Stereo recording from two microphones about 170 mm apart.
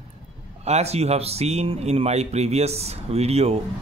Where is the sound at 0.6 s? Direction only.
40° right (ahead or behind).